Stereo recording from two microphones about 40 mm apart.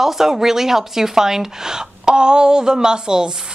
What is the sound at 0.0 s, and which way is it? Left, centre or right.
Speech, centre.